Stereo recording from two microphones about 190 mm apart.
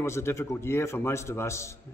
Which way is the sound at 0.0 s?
15° left (ahead or behind).